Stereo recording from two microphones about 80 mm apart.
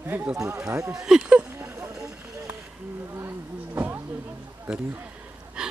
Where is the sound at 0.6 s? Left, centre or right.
Right.